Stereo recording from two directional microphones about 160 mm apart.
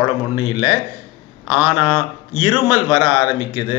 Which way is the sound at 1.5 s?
5° right (ahead or behind).